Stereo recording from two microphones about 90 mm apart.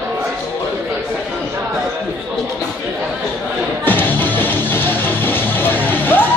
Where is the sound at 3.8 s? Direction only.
20° left (ahead or behind).